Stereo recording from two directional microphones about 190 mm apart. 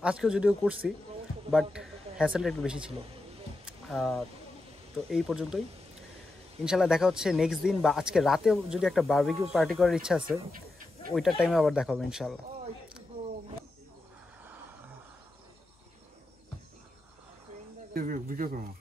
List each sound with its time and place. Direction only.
0.0 s speech: 5° right (ahead or behind)
3.9 s speech: centre (ahead or behind)
6.6 s speech: 5° right (ahead or behind)
17.9 s speech: 45° right (ahead or behind)